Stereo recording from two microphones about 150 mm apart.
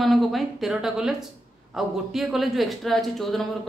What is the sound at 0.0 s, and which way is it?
A man's voice, centre (ahead or behind).